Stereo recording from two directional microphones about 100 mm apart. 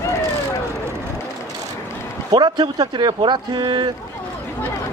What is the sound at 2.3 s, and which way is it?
Speech, 45° right (ahead or behind).